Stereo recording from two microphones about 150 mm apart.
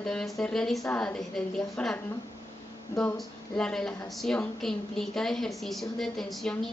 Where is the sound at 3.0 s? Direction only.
5° left (ahead or behind).